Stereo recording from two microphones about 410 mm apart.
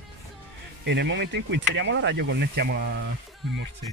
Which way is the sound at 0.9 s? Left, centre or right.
Right.